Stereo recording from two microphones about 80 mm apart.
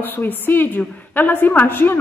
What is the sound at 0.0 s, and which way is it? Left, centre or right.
A woman's voice, left.